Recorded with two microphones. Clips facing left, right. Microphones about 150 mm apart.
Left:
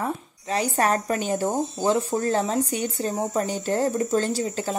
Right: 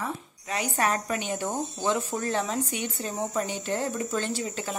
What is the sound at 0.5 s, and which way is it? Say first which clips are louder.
Speech: left 5 dB; 35° left (ahead or behind).